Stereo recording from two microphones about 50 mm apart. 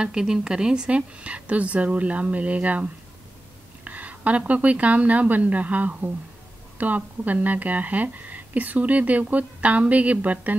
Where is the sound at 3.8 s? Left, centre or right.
Right.